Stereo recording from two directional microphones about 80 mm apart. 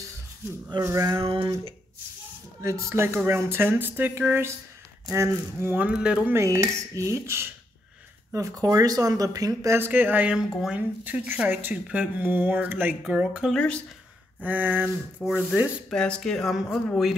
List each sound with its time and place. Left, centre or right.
0.8 s dishes: right
1.1 s a sound: right
2.6 s dishes: right
3.2 s speech: right
5.1 s dishes: right
5.8 s speech: centre
6.4 s dishes: right
8.3 s speech: right
9.7 s speech: right
10.3 s speech: centre
11.1 s speech: centre
13.5 s speech: centre
14.4 s speech: right
15.9 s speech: centre